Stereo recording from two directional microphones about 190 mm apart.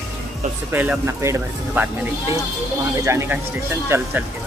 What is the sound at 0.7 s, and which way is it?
Speech, 10° right (ahead or behind).